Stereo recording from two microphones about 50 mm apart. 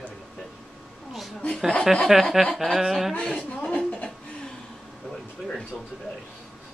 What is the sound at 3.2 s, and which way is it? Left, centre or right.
Speech, centre.